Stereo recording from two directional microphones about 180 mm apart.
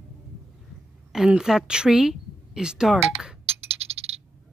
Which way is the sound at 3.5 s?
35° right (ahead or behind).